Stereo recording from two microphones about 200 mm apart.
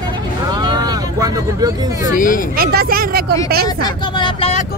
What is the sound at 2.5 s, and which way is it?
Speech, 50° right (ahead or behind).